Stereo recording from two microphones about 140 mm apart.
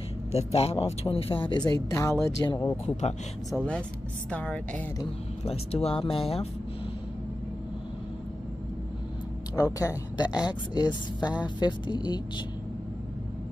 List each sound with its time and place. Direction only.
0.3 s speech: 45° left (ahead or behind); by 2.7 s 30° left (ahead or behind)
2.8 s speech: 50° left (ahead or behind)
3.5 s a woman's voice: 10° left (ahead or behind)
5.4 s speech: 50° left (ahead or behind)
9.8 s a woman's voice: 25° left (ahead or behind)